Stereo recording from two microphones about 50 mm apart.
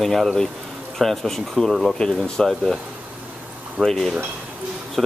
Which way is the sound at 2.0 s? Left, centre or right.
Centre.